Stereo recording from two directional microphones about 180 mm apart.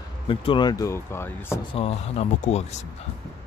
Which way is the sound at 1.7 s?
35° left (ahead or behind).